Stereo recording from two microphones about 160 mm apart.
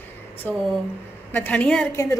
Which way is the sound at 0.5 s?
10° left (ahead or behind).